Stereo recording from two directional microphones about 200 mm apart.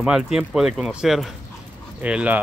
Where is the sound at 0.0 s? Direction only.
5° right (ahead or behind).